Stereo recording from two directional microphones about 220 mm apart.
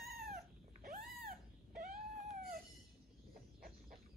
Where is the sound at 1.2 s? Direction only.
40° right (ahead or behind).